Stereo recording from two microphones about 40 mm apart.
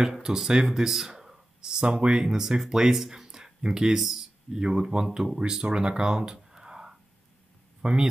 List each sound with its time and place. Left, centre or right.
0.0 s speech: centre